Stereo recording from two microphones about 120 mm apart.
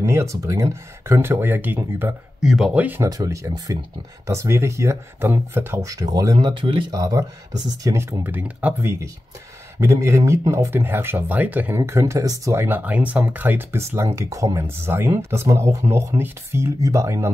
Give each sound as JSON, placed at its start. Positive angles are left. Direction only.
{"t": 0.0, "sound": "speech", "side_deg": -25}
{"t": 2.4, "sound": "speech", "side_deg": -5}
{"t": 3.0, "sound": "speech", "side_deg": -25}
{"t": 6.3, "sound": "speech", "side_deg": -45}
{"t": 9.8, "sound": "speech", "side_deg": -25}